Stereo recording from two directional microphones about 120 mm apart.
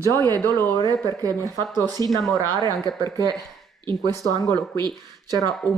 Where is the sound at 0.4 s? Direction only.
20° left (ahead or behind).